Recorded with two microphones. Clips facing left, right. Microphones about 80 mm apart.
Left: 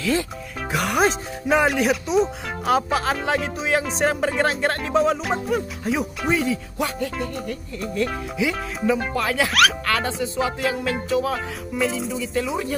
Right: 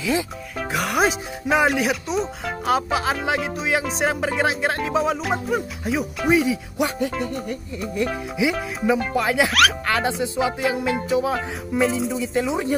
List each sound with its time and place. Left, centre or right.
0.0 s speech: centre
0.6 s speech: centre
9.5 s speech: centre
9.8 s speech: centre